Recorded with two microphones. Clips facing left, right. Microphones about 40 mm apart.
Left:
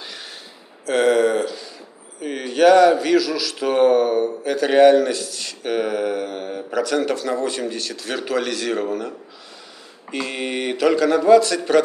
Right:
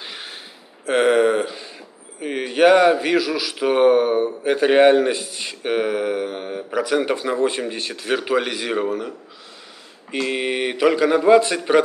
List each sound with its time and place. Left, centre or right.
0.0 s a sound: right
2.1 s a man's voice: centre
10.2 s a man's voice: centre